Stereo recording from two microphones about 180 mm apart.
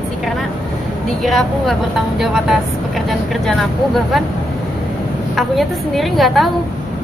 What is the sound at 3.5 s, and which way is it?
Speech, centre (ahead or behind).